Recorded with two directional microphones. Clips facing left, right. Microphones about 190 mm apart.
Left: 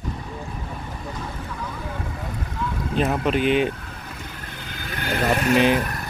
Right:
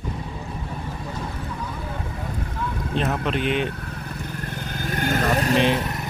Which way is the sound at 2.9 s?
5° left (ahead or behind).